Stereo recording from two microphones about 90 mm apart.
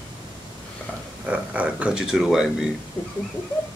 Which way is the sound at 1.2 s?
15° right (ahead or behind).